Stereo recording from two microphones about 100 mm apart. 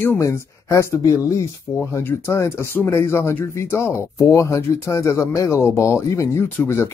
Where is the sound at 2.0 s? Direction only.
25° left (ahead or behind).